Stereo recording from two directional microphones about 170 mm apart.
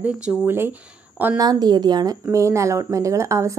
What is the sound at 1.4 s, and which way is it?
A woman's voice, 25° right (ahead or behind).